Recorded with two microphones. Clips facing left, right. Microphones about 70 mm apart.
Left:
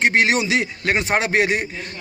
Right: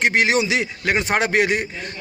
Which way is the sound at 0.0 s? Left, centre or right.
Left.